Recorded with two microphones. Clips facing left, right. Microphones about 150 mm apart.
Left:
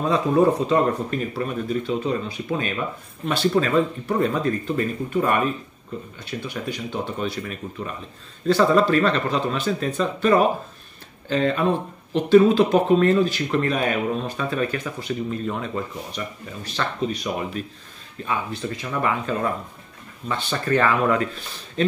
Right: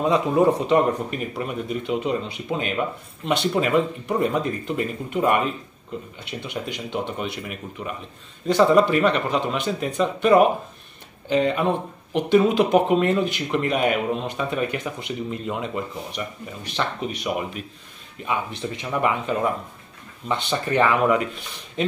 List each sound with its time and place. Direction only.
0.0 s speech: 20° right (ahead or behind)